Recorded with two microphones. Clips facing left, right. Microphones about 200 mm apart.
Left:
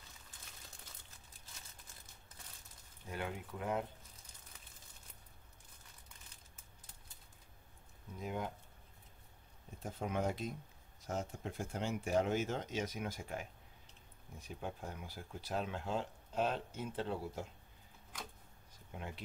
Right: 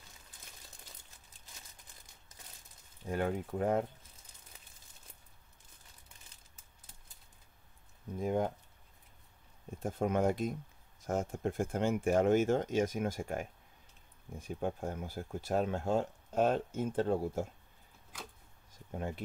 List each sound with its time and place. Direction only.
3.1 s speech: 45° right (ahead or behind)
8.2 s speech: 45° right (ahead or behind)
9.8 s speech: 50° right (ahead or behind)
18.9 s speech: 45° right (ahead or behind)